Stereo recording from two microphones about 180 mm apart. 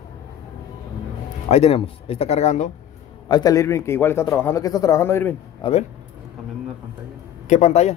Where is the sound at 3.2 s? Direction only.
20° left (ahead or behind).